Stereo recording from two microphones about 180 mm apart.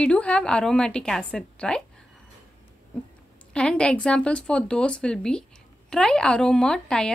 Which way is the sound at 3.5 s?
5° left (ahead or behind).